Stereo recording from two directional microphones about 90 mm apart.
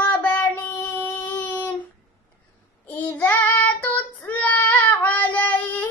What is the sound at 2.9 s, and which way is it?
Child singing, 20° left (ahead or behind).